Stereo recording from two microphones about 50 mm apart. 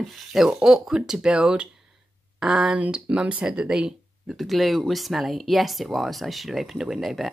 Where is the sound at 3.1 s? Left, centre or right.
Right.